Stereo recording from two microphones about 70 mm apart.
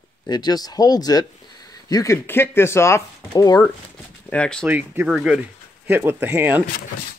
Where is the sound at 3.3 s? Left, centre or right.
Left.